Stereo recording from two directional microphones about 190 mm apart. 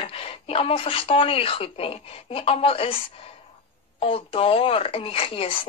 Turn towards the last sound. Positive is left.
turn(degrees=30)  # may be behind; listen again after turning